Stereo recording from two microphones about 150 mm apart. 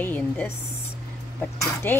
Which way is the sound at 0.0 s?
10° left (ahead or behind).